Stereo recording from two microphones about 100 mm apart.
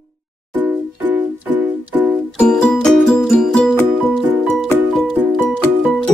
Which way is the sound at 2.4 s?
5° left (ahead or behind).